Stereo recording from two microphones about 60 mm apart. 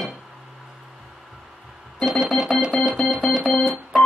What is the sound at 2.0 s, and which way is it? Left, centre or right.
Organ, centre.